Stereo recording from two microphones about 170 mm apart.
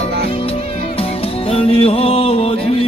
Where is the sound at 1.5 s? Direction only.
35° left (ahead or behind).